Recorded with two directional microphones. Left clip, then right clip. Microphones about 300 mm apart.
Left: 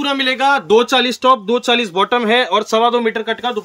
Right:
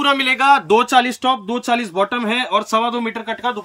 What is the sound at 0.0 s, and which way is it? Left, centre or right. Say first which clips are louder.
Speech: right 1 dB; centre.